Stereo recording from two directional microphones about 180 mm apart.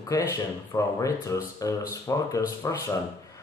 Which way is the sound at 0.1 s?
20° left (ahead or behind).